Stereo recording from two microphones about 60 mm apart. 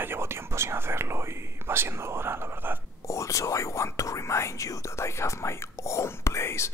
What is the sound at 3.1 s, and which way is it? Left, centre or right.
Whispering, left.